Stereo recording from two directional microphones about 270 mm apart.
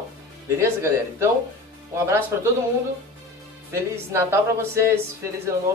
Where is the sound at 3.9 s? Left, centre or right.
Centre.